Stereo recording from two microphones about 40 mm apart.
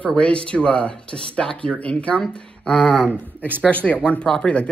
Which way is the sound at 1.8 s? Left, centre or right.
Left.